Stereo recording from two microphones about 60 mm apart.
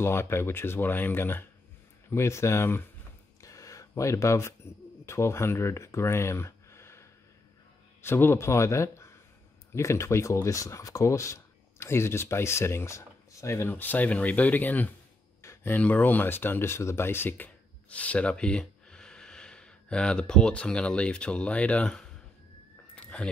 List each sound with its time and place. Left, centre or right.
0.0 s speech: left
2.0 s speech: left
3.3 s a sound: left
8.0 s speech: left
13.7 s speech: left
15.4 s a sound: left
15.7 s speech: left
17.8 s speech: left
21.8 s speech: centre
22.9 s a sound: centre